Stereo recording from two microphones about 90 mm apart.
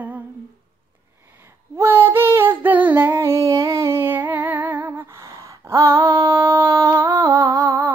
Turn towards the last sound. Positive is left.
turn(degrees=-40)  # may be behind; listen again after turning